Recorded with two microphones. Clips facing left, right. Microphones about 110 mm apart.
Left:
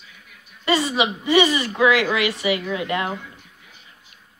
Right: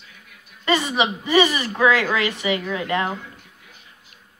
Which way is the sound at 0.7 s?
25° right (ahead or behind).